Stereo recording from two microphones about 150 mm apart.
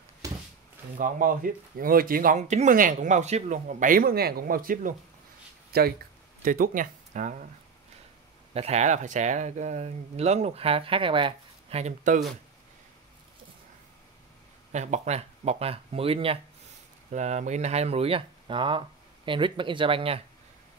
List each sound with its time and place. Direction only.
0.9 s speech: 65° right (ahead or behind)
5.7 s speech: 90° right
6.4 s speech: 65° right (ahead or behind)
8.5 s speech: 45° right (ahead or behind)
14.7 s speech: 50° right (ahead or behind)
17.1 s speech: 50° right (ahead or behind)